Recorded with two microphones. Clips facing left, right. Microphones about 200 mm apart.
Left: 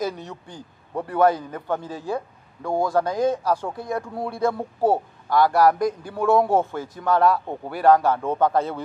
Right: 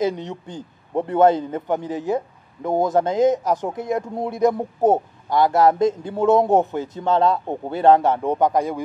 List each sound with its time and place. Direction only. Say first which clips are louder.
0.0 s a man's voice: right 5 dB; 20° right (ahead or behind)